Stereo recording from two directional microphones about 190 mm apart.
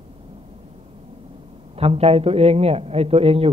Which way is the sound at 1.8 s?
30° right (ahead or behind).